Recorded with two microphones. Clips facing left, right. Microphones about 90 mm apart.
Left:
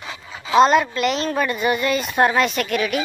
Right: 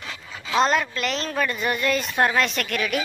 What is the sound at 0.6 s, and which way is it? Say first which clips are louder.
A woman's voice: left 6 dB; 10° left (ahead or behind).